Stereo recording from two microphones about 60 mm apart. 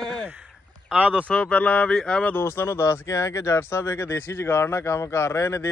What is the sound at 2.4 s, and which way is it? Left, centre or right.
Speech, left.